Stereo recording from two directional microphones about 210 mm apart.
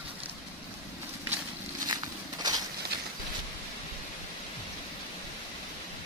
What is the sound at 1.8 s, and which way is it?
Walk, 20° right (ahead or behind).